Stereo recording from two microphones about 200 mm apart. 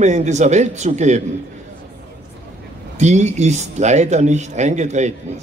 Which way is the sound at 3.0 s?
35° right (ahead or behind).